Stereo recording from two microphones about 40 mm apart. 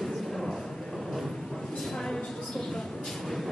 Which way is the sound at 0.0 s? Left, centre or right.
Centre.